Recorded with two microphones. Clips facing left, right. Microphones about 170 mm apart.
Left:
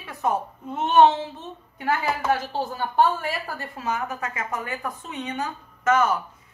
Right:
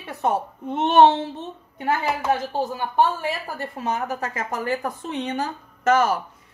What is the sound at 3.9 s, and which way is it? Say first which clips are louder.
A woman's voice: right 1 dB; 35° right (ahead or behind).